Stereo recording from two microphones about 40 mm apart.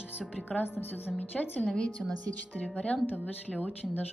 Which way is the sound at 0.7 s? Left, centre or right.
Left.